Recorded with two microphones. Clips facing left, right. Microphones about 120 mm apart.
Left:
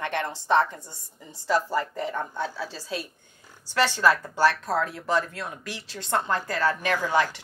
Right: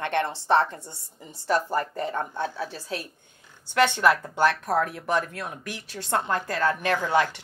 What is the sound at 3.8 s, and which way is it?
A woman's voice, 20° right (ahead or behind).